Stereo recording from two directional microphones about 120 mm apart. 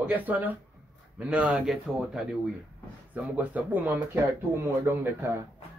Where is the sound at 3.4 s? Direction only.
15° right (ahead or behind).